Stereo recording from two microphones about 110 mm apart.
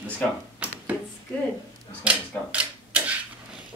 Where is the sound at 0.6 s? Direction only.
10° right (ahead or behind).